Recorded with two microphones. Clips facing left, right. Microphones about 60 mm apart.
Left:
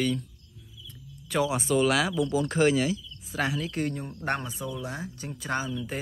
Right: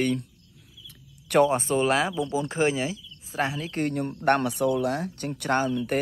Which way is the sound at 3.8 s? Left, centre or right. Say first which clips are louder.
Right 7 dB; right.